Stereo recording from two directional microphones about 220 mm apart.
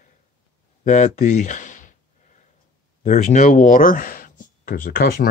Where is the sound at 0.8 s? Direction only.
35° left (ahead or behind).